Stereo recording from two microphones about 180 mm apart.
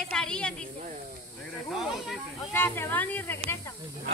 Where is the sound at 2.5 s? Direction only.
10° left (ahead or behind).